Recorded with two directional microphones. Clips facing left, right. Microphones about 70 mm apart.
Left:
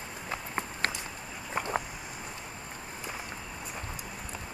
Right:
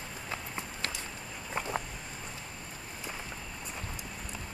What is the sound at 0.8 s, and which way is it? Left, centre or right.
Walk, left.